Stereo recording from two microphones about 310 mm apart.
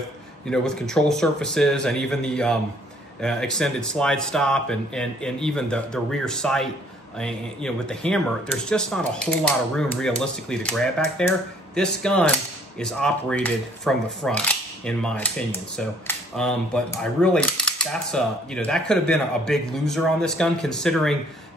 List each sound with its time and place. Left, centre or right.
0.5 s speech: centre